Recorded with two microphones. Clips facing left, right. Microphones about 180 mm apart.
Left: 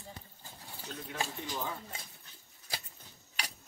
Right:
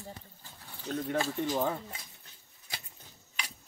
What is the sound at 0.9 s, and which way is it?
Speech, 50° right (ahead or behind).